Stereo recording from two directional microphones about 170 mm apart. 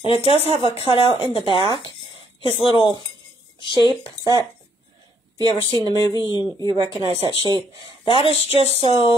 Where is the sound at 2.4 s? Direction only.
30° left (ahead or behind).